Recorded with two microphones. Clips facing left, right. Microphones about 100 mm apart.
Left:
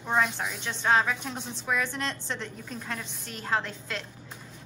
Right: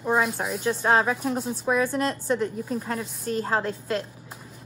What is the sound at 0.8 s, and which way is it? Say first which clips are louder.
Speech: right 2 dB; 35° right (ahead or behind).